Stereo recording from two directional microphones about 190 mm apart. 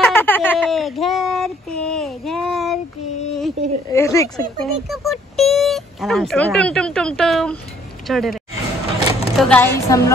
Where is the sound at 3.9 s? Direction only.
15° left (ahead or behind).